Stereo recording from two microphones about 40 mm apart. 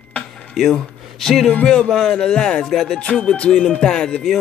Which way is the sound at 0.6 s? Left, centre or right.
Centre.